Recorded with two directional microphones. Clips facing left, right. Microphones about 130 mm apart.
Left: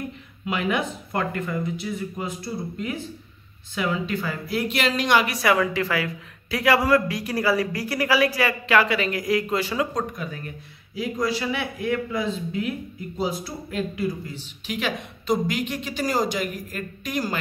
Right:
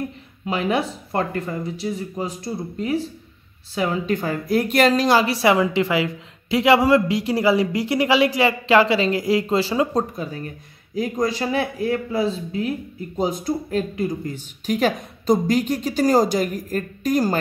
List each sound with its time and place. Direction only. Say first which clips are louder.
0.5 s speech: right 3 dB; 35° right (ahead or behind)
11.0 s speech: right 3 dB; 45° right (ahead or behind)